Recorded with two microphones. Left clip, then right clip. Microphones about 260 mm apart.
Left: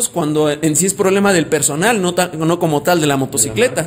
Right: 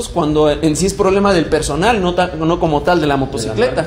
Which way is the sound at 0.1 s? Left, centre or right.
Left.